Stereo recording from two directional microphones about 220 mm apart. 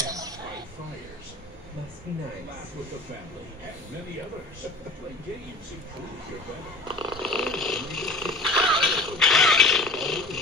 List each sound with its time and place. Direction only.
0.0 s a sound: 15° right (ahead or behind)
6.9 s snoring: 20° right (ahead or behind)
7.2 s cat: centre (ahead or behind)